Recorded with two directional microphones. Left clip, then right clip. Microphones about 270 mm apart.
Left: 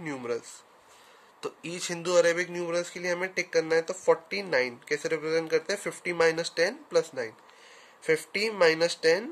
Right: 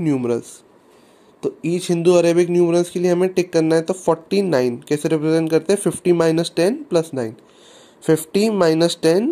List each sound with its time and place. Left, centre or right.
0.0 s speech: centre
1.4 s speech: centre
8.5 s speech: centre